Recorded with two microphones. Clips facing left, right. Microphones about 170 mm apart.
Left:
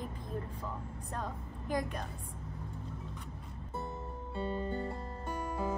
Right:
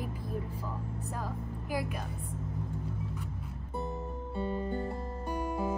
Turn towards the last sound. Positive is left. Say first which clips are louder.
# right 3 dB
turn(degrees=-15)  # may be behind; listen again after turning